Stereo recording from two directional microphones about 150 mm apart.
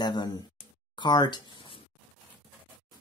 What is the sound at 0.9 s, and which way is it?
Speech, 30° left (ahead or behind).